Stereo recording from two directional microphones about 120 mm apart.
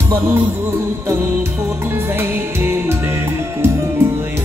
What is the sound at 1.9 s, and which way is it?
Music, 20° right (ahead or behind).